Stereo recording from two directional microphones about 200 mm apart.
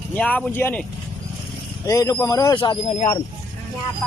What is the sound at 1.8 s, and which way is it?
Speech, 15° left (ahead or behind).